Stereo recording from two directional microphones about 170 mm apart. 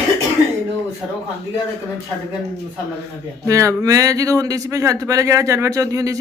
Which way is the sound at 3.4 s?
20° right (ahead or behind).